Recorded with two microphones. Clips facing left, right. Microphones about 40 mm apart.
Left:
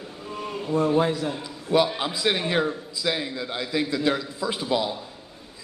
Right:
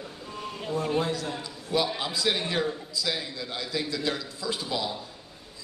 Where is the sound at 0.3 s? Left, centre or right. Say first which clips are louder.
Left 5 dB; left.